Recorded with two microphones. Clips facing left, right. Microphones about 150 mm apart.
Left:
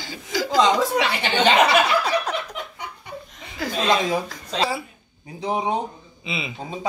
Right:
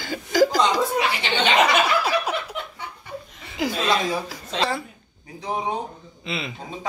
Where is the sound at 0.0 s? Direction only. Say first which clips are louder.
Right 8 dB; 50° right (ahead or behind).